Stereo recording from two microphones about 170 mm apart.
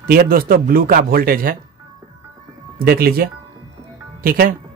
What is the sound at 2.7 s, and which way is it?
Speech, 60° right (ahead or behind).